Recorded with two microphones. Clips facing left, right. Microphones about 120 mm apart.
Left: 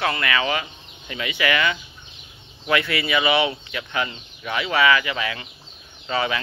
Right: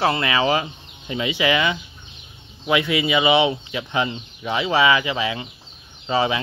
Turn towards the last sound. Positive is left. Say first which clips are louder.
# right 4 dB
turn(degrees=-20)  # may be behind; listen again after turning